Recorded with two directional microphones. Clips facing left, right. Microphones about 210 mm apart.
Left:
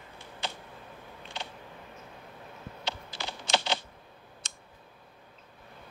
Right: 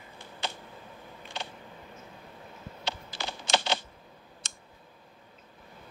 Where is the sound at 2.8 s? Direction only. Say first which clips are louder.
Right 1 dB; 50° right (ahead or behind).